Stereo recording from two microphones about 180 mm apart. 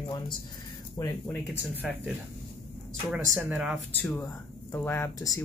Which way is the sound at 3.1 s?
Centre (ahead or behind).